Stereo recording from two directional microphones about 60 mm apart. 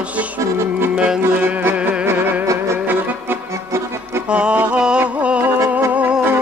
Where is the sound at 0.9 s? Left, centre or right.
Centre.